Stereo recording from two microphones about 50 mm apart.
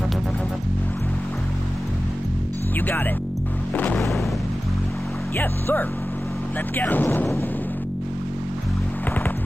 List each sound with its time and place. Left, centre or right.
3.7 s music: left
5.4 s speech: left